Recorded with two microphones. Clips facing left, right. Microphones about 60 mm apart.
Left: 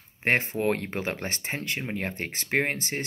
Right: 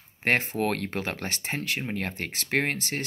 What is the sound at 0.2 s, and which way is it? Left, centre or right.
Speech, left.